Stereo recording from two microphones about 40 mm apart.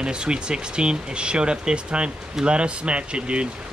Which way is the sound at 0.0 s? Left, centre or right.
Right.